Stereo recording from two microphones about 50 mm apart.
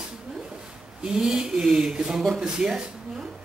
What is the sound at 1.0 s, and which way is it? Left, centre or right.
Speech, centre.